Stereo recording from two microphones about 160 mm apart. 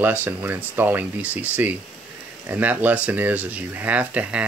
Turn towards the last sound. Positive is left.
turn(degrees=-10)  # may be behind; listen again after turning